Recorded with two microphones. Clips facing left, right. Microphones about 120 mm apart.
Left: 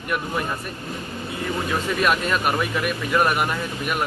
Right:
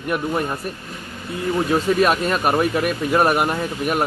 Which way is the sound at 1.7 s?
35° right (ahead or behind).